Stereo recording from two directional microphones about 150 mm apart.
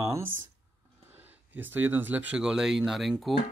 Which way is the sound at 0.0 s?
15° right (ahead or behind).